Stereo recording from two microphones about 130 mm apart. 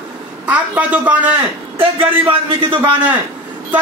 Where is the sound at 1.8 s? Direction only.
45° right (ahead or behind).